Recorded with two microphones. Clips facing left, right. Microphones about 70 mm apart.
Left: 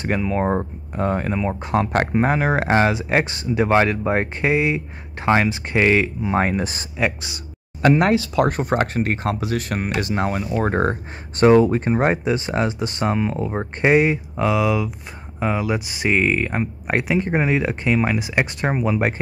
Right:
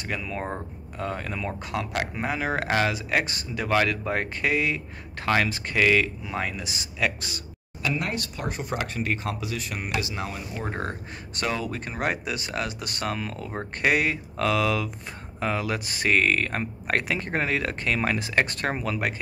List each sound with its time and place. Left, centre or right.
0.0 s speech: left
7.8 s speech: left; by 18.9 s centre